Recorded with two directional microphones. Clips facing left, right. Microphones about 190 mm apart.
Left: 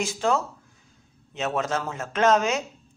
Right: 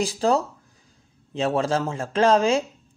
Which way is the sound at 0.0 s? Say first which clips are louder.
Right 3 dB; 35° right (ahead or behind).